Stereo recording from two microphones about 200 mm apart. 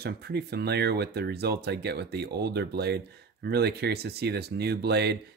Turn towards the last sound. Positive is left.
turn(degrees=-55)  # may be behind; listen again after turning